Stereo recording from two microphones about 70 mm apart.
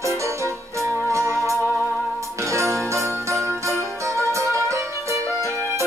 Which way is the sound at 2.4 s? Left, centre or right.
Right.